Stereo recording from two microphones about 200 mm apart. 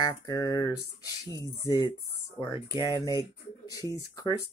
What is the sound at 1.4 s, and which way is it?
Speech, 15° right (ahead or behind).